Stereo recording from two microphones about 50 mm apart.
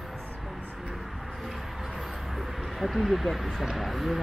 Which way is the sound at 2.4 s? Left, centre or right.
Centre.